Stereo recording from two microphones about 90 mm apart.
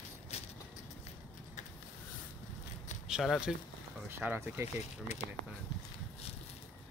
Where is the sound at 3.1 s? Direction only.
5° right (ahead or behind).